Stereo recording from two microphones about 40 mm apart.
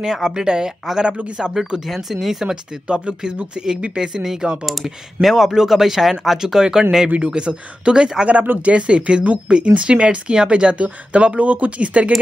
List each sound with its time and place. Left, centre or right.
0.0 s speech: centre
0.9 s speech: centre
2.4 s speech: right; by 6.4 s centre
6.4 s speech: centre
7.1 s speech: right